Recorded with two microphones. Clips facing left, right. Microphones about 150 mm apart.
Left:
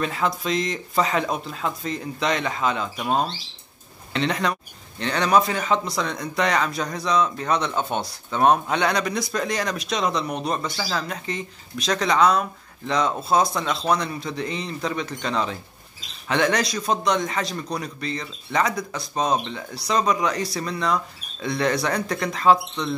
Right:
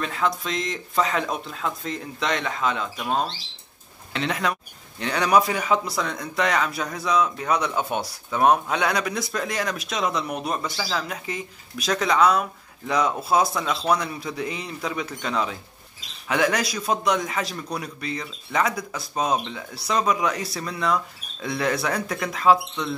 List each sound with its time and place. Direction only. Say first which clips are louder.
0.0 s a man's voice: left 1 dB; centre (ahead or behind)
4.1 s a man's voice: left 2 dB; 5° right (ahead or behind)